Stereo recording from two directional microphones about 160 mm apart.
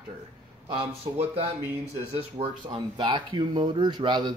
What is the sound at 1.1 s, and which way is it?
Speech, 30° right (ahead or behind).